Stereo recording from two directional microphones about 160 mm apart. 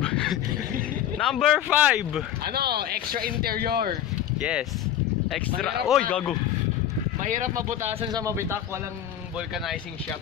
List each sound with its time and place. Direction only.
0.0 s a sound: 5° left (ahead or behind)
1.1 s speech: centre (ahead or behind)
2.4 s speech: 80° right
4.4 s speech: 5° right (ahead or behind)
7.2 s speech: 50° right (ahead or behind)
8.0 s speech: 25° right (ahead or behind)